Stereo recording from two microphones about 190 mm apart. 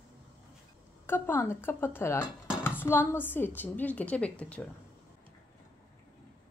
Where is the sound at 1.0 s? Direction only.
10° left (ahead or behind).